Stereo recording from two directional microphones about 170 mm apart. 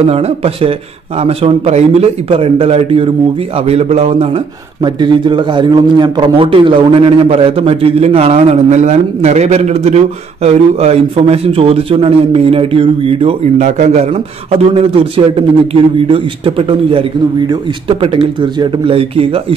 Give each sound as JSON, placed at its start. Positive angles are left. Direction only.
{"t": 0.0, "sound": "a man's voice", "side_deg": -35}
{"t": 4.8, "sound": "a man's voice", "side_deg": -25}